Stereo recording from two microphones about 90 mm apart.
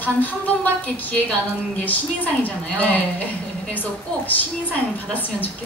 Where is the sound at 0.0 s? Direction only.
20° left (ahead or behind).